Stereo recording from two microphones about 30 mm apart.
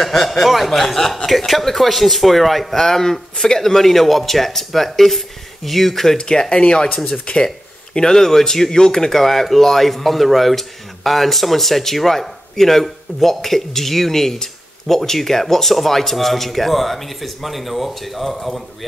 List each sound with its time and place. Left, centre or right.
0.0 s speech: centre
0.4 s speech: centre
0.7 s speech: centre
6.1 s speech: left
7.9 s speech: centre
9.2 s speech: centre